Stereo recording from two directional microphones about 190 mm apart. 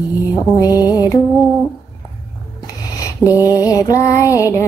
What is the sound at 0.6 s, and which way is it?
Music, 20° left (ahead or behind).